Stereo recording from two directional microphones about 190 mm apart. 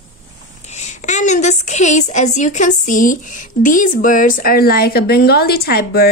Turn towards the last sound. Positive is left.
turn(degrees=55)  # may be behind; listen again after turning